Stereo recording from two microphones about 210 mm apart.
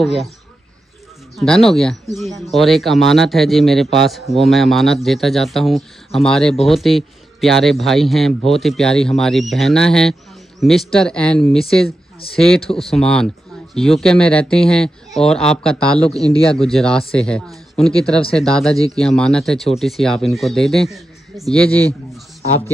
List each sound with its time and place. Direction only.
0.0 s speech: centre (ahead or behind)
1.3 s a man's voice: centre (ahead or behind)